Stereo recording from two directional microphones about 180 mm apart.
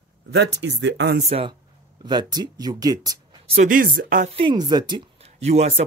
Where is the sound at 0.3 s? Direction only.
70° right (ahead or behind).